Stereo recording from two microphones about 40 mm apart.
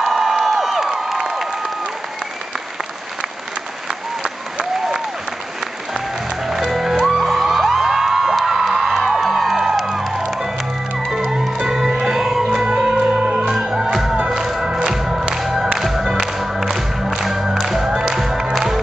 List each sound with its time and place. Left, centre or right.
0.0 s crowd: centre
0.8 s a sound: centre
6.4 s music: centre
11.1 s music: centre
12.4 s music: right; by 17.8 s centre
17.8 s music: right
18.1 s music: centre